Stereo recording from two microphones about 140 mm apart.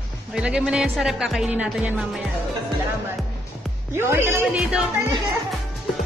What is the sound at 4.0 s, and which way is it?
Speech, 15° right (ahead or behind).